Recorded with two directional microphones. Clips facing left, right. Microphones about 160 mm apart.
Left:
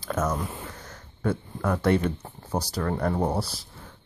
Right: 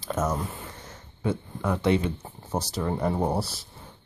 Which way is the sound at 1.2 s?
15° right (ahead or behind).